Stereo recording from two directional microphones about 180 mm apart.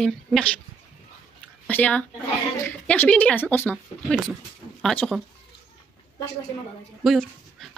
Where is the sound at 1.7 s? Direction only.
10° left (ahead or behind).